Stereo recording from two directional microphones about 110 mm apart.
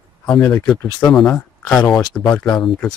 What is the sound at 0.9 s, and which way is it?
Speech, 35° left (ahead or behind).